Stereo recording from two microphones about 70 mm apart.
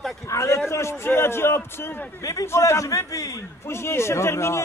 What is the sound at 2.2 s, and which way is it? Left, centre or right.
A man's voice, left.